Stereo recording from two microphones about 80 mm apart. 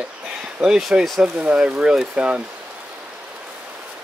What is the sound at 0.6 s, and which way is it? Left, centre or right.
Speech, centre.